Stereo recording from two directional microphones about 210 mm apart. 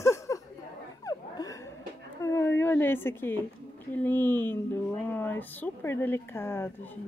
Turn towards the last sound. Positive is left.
turn(degrees=10)  # may be behind; listen again after turning